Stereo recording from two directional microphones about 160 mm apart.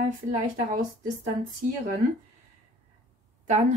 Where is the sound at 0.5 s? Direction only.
55° right (ahead or behind).